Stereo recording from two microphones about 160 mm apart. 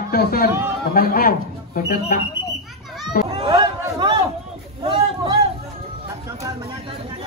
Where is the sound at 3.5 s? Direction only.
25° right (ahead or behind).